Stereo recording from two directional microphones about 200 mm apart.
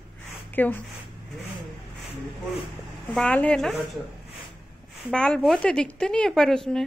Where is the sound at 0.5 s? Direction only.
10° left (ahead or behind).